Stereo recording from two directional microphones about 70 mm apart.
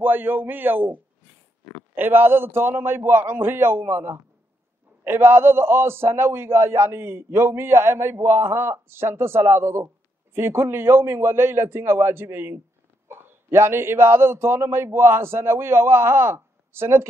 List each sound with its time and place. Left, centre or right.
0.0 s a man's voice: right